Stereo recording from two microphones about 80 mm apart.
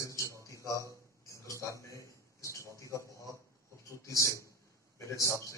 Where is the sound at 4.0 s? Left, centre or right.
Left.